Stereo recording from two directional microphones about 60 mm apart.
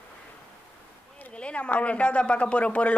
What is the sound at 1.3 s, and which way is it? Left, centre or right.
Speech, centre.